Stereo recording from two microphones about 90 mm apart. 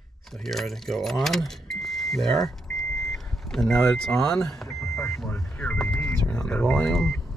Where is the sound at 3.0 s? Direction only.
5° left (ahead or behind).